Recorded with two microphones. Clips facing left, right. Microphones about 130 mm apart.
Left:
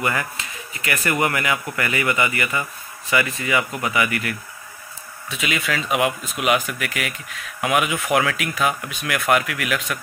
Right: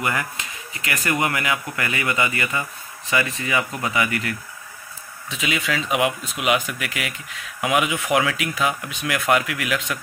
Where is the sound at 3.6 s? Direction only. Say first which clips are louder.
Left 1 dB; 15° left (ahead or behind).